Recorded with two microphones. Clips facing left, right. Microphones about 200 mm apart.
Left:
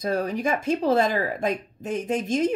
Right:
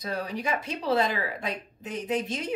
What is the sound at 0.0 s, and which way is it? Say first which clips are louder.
Speech: left 7 dB; 45° left (ahead or behind).